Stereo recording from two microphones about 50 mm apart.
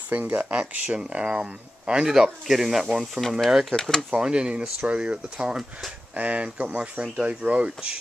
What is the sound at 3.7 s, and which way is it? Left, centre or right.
Speech, centre.